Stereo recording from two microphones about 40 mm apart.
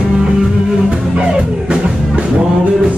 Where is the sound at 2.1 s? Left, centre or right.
Right.